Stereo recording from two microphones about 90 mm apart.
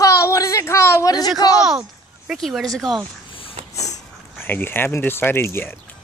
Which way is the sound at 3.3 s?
90° left.